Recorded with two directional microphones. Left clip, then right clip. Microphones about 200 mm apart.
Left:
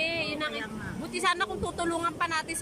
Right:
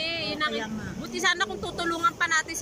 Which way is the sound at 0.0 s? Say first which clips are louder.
Right 2 dB; 5° left (ahead or behind).